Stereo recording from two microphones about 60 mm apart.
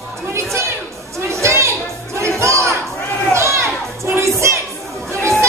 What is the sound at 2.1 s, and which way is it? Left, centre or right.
Music, right.